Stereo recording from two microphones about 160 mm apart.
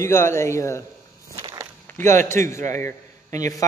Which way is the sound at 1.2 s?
25° right (ahead or behind).